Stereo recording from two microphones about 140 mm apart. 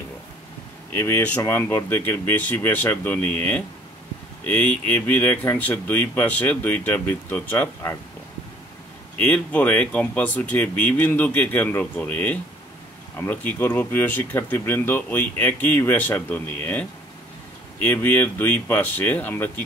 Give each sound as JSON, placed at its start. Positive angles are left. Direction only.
{"t": 0.9, "sound": "speech", "side_deg": 15}
{"t": 9.2, "sound": "speech", "side_deg": 10}